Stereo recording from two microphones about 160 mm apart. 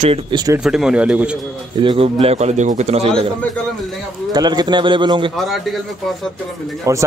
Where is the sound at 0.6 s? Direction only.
5° right (ahead or behind).